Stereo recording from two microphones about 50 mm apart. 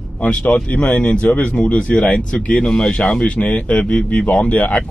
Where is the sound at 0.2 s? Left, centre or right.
Left.